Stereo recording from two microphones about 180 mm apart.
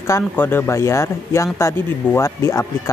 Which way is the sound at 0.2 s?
10° left (ahead or behind).